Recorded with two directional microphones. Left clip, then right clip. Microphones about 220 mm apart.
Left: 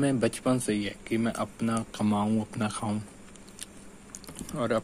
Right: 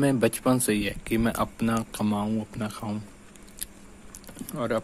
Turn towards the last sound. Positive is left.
turn(degrees=0)  # may be behind; listen again after turning